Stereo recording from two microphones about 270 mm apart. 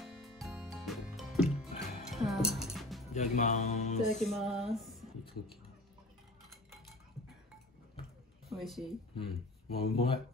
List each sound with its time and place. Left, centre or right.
0.0 s music: centre
3.1 s speech: left
4.2 s speech: centre
8.5 s speech: centre
9.7 s speech: left